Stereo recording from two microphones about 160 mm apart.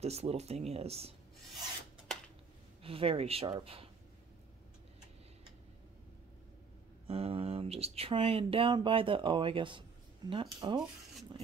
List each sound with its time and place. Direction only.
0.0 s speech: 40° right (ahead or behind)
2.8 s speech: 35° right (ahead or behind)
7.1 s speech: 35° right (ahead or behind)